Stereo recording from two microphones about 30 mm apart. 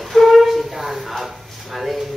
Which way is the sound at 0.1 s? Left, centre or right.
Centre.